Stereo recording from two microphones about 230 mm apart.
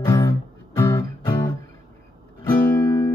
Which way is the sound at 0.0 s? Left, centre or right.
Centre.